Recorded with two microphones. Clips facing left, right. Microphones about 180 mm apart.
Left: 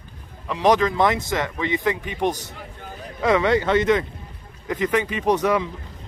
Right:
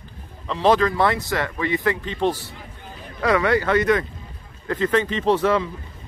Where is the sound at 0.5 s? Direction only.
15° left (ahead or behind).